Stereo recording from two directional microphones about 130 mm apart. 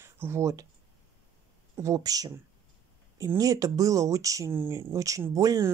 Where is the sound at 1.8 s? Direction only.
25° right (ahead or behind).